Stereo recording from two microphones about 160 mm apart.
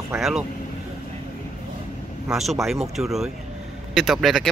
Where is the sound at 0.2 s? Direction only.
Centre (ahead or behind).